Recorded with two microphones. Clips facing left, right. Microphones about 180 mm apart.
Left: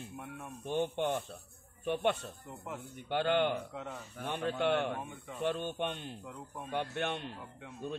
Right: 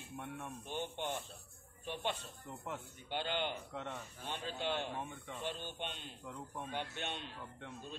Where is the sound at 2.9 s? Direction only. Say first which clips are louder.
Left 10 dB; 60° left (ahead or behind).